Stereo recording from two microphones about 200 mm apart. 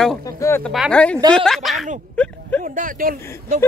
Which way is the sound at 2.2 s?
5° left (ahead or behind).